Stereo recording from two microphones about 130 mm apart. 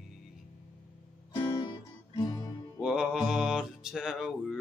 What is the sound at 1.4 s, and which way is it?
Music, 40° left (ahead or behind).